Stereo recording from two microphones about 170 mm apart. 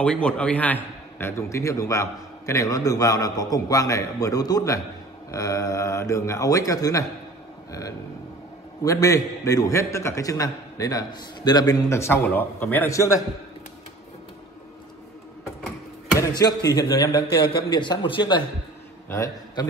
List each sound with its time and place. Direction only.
0.0 s a man's voice: 5° left (ahead or behind)
8.8 s a man's voice: 20° left (ahead or behind)
16.2 s a man's voice: 25° left (ahead or behind)